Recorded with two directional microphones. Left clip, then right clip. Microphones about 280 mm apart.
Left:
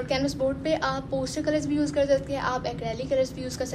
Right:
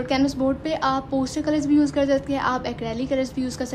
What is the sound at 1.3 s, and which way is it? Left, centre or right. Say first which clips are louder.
A woman's voice: right 6 dB; right.